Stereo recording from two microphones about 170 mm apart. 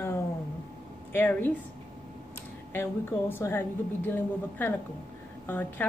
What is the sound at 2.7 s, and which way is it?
Speech, 10° left (ahead or behind).